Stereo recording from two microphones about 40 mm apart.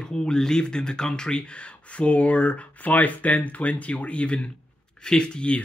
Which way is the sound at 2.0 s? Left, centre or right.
Left.